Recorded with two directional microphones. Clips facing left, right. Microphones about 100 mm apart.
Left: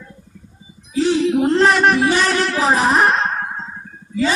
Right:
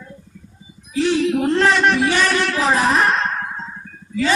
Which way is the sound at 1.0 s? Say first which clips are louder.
Left 2 dB; 20° left (ahead or behind).